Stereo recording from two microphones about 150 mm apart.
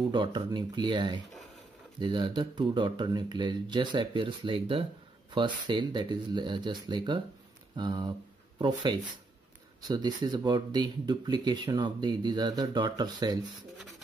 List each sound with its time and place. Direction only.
0.1 s speech: 30° right (ahead or behind)